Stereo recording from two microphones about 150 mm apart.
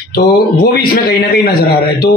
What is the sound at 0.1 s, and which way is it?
A man's voice, 85° left.